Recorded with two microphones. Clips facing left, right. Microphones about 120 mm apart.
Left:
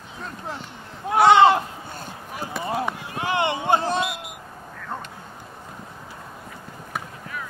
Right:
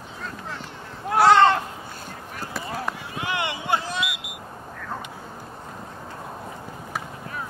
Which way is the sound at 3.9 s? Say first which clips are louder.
Left 5 dB; 40° left (ahead or behind).